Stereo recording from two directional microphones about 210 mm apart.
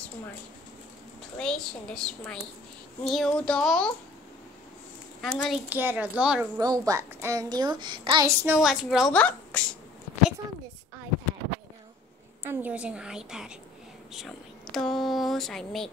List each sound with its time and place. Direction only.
1.4 s speech: 5° left (ahead or behind)
5.2 s speech: centre (ahead or behind)
6.6 s a child's voice: 15° right (ahead or behind)
8.5 s speech: centre (ahead or behind)
12.4 s speech: 5° right (ahead or behind)